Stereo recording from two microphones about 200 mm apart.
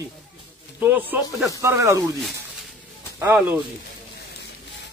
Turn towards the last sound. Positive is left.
turn(degrees=-10)  # may be behind; listen again after turning